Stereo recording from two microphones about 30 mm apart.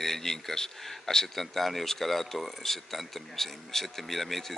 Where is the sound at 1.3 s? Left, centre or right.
Centre.